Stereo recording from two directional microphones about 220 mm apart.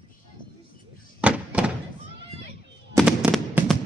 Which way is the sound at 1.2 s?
5° right (ahead or behind).